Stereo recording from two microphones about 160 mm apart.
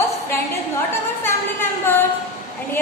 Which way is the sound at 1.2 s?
15° left (ahead or behind).